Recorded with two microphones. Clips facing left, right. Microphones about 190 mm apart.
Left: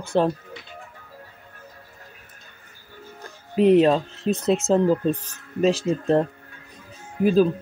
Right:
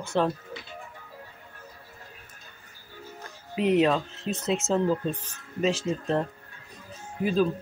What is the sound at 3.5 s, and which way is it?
Speech, 35° left (ahead or behind).